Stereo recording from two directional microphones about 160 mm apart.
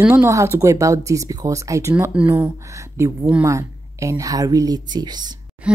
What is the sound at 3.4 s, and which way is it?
Speech, 20° right (ahead or behind).